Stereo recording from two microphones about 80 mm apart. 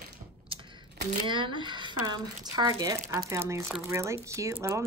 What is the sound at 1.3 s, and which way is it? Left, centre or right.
Speech, right.